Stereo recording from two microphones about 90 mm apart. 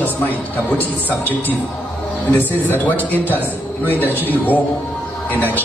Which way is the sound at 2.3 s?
20° left (ahead or behind).